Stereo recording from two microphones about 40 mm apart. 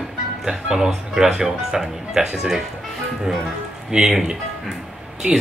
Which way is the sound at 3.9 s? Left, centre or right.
Right.